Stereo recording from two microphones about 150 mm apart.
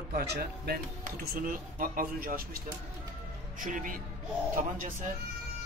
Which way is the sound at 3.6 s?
65° right (ahead or behind).